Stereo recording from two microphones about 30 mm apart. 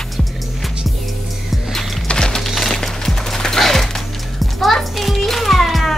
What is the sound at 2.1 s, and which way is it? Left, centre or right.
Music, left.